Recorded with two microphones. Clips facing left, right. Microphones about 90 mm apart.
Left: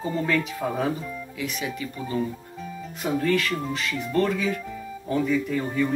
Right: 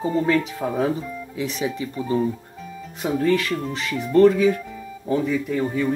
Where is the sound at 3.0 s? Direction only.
10° right (ahead or behind).